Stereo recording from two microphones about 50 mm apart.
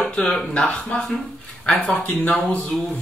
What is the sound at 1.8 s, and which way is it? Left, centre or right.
Speech, left.